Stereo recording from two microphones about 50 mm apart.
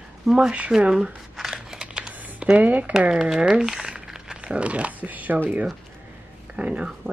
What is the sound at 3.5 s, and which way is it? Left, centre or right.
Crumpling, centre.